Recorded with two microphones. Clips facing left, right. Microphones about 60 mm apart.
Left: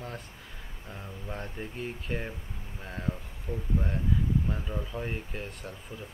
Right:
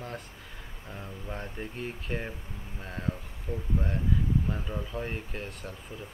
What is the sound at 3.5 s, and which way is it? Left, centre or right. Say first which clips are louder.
Speech: even; right.